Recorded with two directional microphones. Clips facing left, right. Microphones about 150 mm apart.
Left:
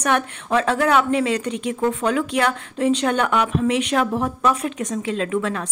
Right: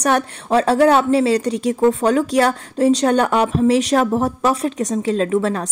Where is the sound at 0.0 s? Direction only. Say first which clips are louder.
Right 3 dB; 35° right (ahead or behind).